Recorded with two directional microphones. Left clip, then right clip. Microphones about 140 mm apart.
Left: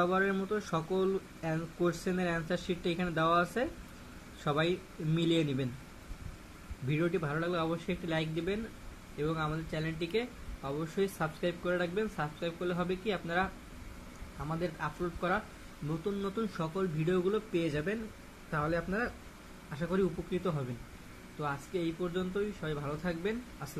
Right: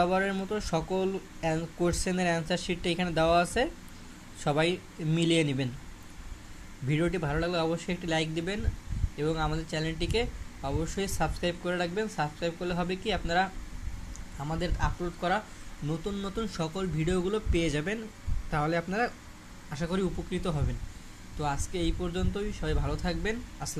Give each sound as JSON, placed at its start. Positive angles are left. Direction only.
{"t": 0.0, "sound": "speech", "side_deg": -40}
{"t": 6.9, "sound": "speech", "side_deg": -40}
{"t": 14.5, "sound": "speech", "side_deg": -40}